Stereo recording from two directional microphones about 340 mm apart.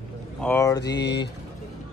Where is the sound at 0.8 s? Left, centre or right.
Left.